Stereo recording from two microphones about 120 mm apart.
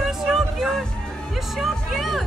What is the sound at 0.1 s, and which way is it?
Music, centre (ahead or behind).